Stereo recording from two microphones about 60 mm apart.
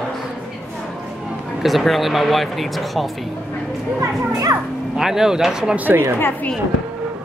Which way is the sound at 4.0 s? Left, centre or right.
Right.